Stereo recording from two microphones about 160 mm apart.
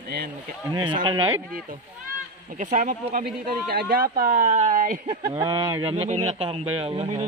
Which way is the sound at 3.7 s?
70° right (ahead or behind).